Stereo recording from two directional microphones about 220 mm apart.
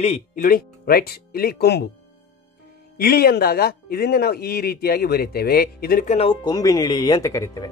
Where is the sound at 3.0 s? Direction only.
45° left (ahead or behind); by 7.7 s 15° left (ahead or behind).